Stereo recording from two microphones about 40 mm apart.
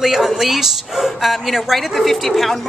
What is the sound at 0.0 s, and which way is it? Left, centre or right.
Speech, centre.